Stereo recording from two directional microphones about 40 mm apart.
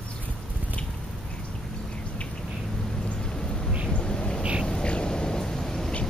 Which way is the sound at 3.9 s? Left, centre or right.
Left.